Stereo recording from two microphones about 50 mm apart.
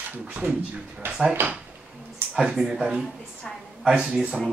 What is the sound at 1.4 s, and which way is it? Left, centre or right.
Speech, right.